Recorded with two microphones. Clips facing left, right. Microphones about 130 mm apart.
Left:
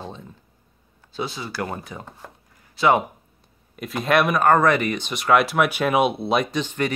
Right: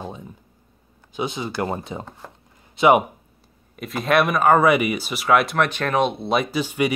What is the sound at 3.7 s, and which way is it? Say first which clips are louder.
Speech: right 1 dB; centre (ahead or behind).